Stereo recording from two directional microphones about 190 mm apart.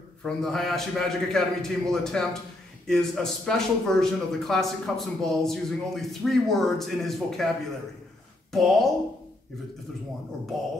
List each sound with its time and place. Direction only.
0.2 s a man's voice: centre (ahead or behind)
8.5 s speech: centre (ahead or behind)